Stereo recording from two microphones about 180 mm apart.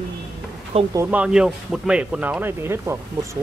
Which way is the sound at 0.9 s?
5° right (ahead or behind).